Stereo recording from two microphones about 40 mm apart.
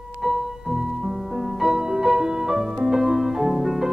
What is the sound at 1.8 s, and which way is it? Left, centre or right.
Music, centre.